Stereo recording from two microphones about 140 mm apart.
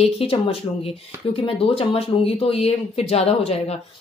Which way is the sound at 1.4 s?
45° left (ahead or behind).